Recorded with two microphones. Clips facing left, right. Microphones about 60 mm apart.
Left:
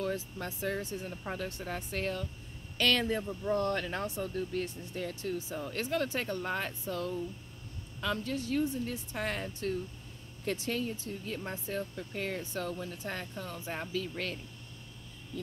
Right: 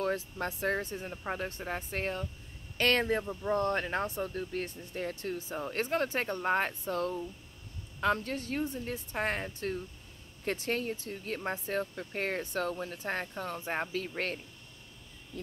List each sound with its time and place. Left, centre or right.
0.0 s speech: right
1.1 s speech: right